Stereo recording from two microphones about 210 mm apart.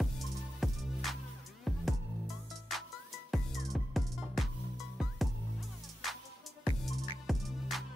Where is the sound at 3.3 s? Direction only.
Centre (ahead or behind).